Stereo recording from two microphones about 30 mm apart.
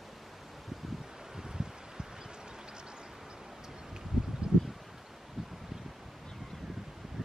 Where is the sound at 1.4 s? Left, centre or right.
Right.